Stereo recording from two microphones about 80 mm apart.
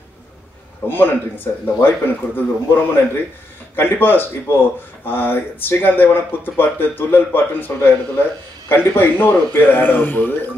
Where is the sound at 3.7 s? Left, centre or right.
Left.